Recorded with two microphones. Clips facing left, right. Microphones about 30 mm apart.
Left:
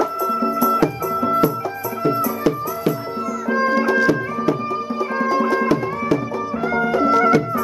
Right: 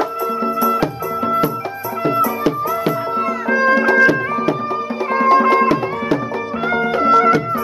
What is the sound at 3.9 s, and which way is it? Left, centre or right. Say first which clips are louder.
Music: right 4 dB; right.